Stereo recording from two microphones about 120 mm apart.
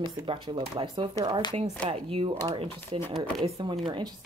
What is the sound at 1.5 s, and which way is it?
Speech, 60° right (ahead or behind).